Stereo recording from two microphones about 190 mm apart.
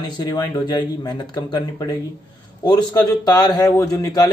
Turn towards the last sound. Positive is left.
turn(degrees=20)  # may be behind; listen again after turning